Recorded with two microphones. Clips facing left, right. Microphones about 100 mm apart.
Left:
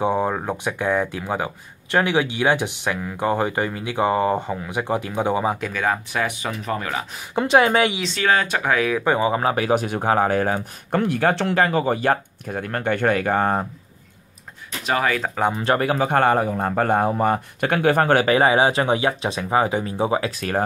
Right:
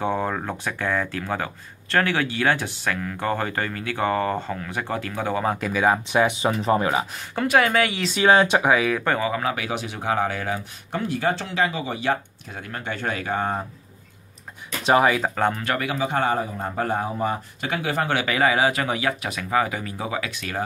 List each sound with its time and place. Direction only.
0.0 s speech: 15° left (ahead or behind)
5.7 s speech: 10° right (ahead or behind)
6.2 s speech: 25° right (ahead or behind)
7.3 s speech: 20° left (ahead or behind)
8.2 s speech: 20° right (ahead or behind)
8.6 s speech: centre (ahead or behind)
9.0 s speech: 15° left (ahead or behind)
9.3 s speech: 35° left (ahead or behind)
11.0 s speech: 60° left (ahead or behind)
14.8 s a sound: 25° right (ahead or behind)
15.0 s speech: 5° right (ahead or behind)
15.3 s speech: 10° left (ahead or behind)
15.6 s speech: 30° left (ahead or behind)
15.9 s a man's voice: 55° left (ahead or behind)